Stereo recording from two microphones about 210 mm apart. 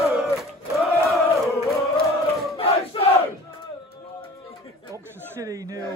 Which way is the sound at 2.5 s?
30° left (ahead or behind).